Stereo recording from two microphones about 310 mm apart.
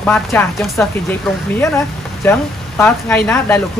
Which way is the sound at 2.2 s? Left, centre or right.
Centre.